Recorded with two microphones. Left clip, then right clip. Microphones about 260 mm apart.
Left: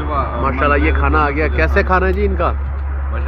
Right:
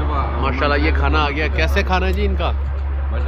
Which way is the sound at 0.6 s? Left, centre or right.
Centre.